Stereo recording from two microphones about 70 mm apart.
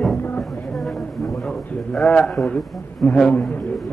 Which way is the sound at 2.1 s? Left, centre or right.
Centre.